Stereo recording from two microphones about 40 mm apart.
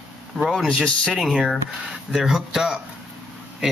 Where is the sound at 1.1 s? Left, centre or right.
Centre.